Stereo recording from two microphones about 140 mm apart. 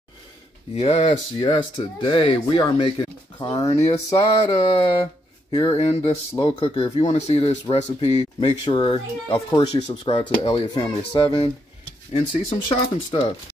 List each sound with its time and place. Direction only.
0.7 s speech: 45° left (ahead or behind); by 3.7 s 30° left (ahead or behind)
3.7 s speech: 50° left (ahead or behind)
4.1 s speech: 35° left (ahead or behind)
8.4 s speech: 35° left (ahead or behind)
10.8 s speech: 30° left (ahead or behind)
12.1 s speech: 55° left (ahead or behind)
12.6 s speech: 35° left (ahead or behind)